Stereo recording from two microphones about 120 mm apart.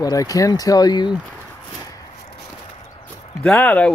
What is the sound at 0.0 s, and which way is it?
Speech, 30° left (ahead or behind).